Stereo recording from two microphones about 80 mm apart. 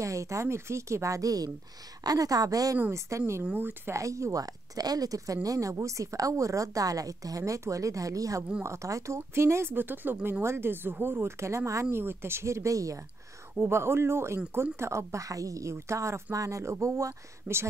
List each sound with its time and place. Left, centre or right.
0.0 s a woman's voice: right
3.5 s speech: right
3.9 s a woman's voice: right
13.7 s speech: right